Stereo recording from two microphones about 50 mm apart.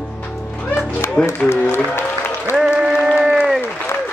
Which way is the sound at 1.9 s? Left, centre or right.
Left.